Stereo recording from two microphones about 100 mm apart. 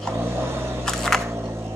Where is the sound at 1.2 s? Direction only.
25° right (ahead or behind).